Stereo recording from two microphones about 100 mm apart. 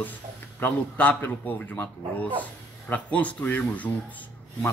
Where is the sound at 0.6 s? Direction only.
15° left (ahead or behind).